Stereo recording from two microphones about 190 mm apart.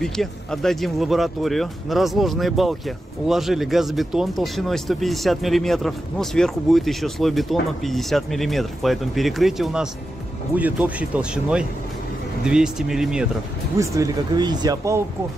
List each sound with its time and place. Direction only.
0.0 s speech: centre (ahead or behind)
13.7 s speech: 15° right (ahead or behind)